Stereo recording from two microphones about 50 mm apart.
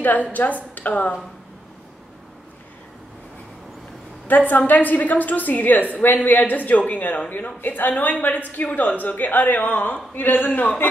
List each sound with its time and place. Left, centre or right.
0.0 s speech: left
4.3 s speech: left